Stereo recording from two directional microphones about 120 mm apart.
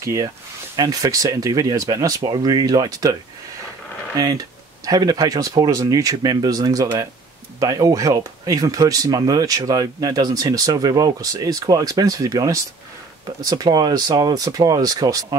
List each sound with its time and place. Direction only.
0.0 s speech: 25° right (ahead or behind)
4.2 s speech: 30° right (ahead or behind)